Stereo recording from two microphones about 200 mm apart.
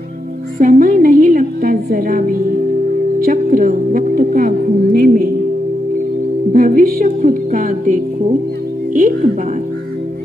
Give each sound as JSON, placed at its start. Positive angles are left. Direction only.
{"t": 0.6, "sound": "a woman's voice", "side_deg": -40}
{"t": 6.5, "sound": "music", "side_deg": -45}
{"t": 8.9, "sound": "a woman's voice", "side_deg": -40}